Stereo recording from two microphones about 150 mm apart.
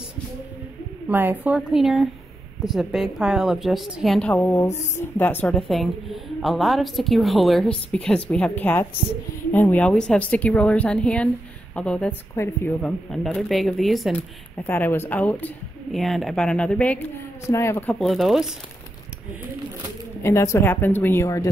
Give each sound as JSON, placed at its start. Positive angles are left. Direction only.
{"t": 1.0, "sound": "a woman's voice", "side_deg": -10}
{"t": 12.8, "sound": "a woman's voice", "side_deg": 5}
{"t": 14.7, "sound": "speech", "side_deg": 15}
{"t": 17.9, "sound": "a woman's voice", "side_deg": 0}
{"t": 20.2, "sound": "speech", "side_deg": 15}